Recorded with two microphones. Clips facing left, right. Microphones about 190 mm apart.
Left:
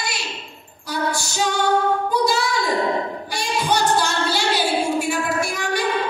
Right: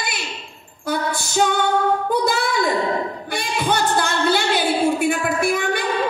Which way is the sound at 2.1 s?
55° right (ahead or behind).